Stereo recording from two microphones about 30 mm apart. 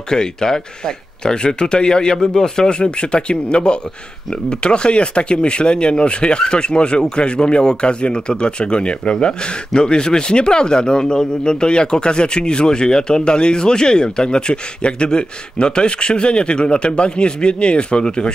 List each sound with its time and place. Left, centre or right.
0.1 s speech: left